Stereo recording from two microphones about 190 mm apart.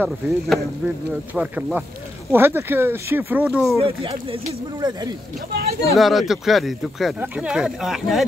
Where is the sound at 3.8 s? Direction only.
30° right (ahead or behind).